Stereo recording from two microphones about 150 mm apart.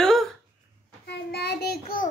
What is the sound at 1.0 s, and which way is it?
Child singing, 90° left.